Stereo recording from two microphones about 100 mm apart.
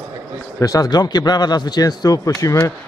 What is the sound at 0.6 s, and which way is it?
Speech, 35° left (ahead or behind).